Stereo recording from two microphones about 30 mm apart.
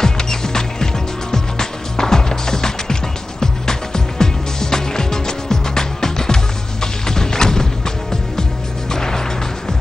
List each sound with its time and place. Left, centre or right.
0.0 s music: centre
8.9 s music: centre